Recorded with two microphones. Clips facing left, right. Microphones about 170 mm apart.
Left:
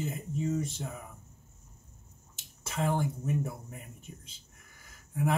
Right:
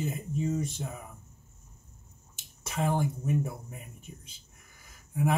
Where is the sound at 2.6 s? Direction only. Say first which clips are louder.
Right 1 dB; 15° right (ahead or behind).